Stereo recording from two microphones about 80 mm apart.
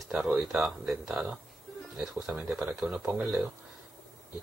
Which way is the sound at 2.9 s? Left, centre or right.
Right.